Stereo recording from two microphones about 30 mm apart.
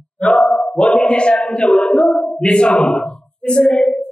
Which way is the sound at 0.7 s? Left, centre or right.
Left.